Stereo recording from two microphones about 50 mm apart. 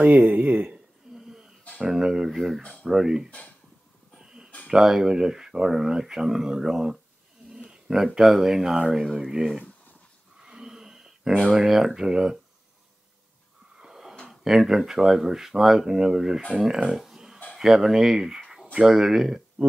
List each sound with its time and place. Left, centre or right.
0.0 s speech: right
0.7 s a sound: centre
1.9 s speech: centre
4.2 s a sound: centre
4.6 s speech: centre
10.4 s a sound: centre
11.6 s speech: centre
13.7 s wheeze: centre
14.3 s speech: centre